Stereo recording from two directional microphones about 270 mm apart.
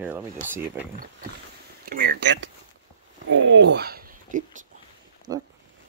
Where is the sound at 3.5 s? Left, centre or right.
Right.